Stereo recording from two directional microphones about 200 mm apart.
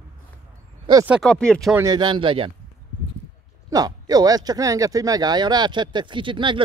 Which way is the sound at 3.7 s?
20° right (ahead or behind).